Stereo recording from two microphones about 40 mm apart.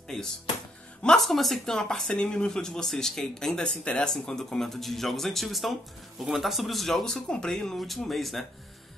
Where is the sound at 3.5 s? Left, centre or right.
Left; by 7.0 s centre.